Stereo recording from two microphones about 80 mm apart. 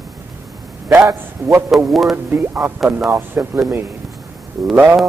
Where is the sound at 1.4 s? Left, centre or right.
Right.